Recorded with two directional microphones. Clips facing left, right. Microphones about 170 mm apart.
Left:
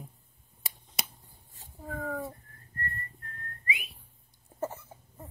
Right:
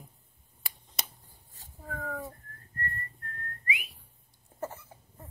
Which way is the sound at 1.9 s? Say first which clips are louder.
Left 2 dB; 20° left (ahead or behind).